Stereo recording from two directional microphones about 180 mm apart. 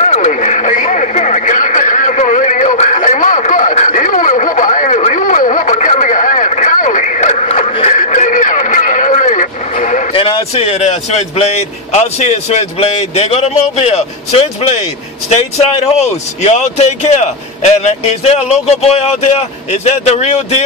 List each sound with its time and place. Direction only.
0.0 s radio: 40° left (ahead or behind)
10.2 s a man's voice: 35° left (ahead or behind)